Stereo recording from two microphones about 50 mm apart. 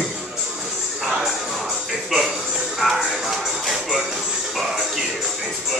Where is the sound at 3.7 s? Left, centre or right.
Centre.